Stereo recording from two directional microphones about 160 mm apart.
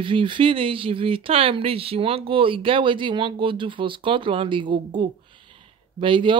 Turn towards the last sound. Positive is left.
turn(degrees=-30)  # may be behind; listen again after turning